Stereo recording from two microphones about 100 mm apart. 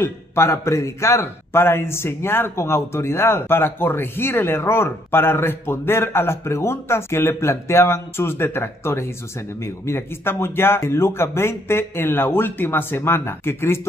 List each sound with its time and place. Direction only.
0.0 s speech: 25° left (ahead or behind)